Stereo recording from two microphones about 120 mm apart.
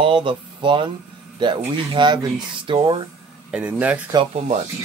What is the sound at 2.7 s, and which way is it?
Speech, 55° right (ahead or behind).